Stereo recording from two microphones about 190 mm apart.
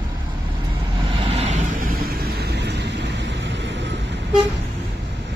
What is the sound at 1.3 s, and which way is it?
Vehicle, 35° right (ahead or behind).